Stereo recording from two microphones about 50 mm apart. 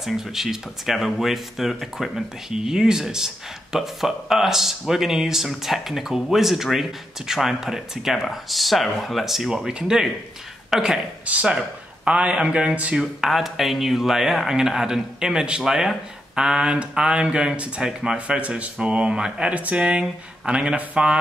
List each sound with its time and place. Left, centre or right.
0.0 s speech: centre
11.2 s speech: right
12.9 s speech: centre
19.5 s speech: right